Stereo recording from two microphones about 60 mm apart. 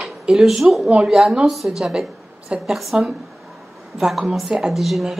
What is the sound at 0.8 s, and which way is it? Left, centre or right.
A woman's voice, centre.